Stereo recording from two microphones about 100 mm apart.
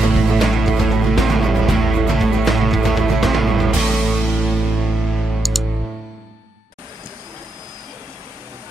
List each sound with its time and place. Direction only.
0.1 s music: centre (ahead or behind)